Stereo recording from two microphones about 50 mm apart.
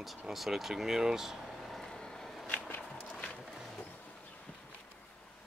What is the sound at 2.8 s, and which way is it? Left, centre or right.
Walk, left.